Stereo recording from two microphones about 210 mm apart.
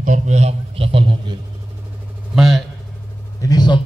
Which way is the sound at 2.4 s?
Centre (ahead or behind).